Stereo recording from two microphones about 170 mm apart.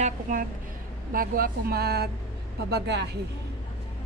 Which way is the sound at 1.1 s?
60° right (ahead or behind).